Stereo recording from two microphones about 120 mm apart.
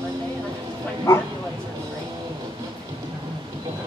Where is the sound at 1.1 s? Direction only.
20° left (ahead or behind).